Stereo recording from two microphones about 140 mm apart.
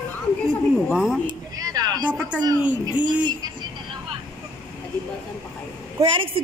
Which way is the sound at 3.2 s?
30° right (ahead or behind).